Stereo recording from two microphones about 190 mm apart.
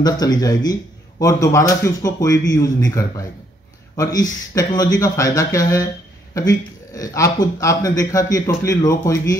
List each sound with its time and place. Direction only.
0.0 s a man's voice: 20° left (ahead or behind)